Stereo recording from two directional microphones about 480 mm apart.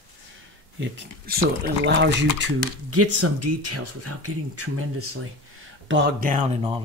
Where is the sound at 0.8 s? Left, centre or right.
Centre.